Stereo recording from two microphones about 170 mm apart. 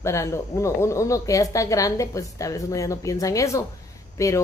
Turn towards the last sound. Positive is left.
turn(degrees=15)  # may be behind; listen again after turning